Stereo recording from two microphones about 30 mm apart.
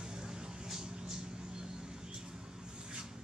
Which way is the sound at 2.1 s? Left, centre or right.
Right.